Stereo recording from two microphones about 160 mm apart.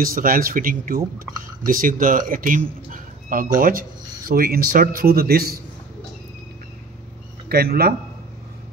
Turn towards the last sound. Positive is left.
turn(degrees=-75)  # may be behind; listen again after turning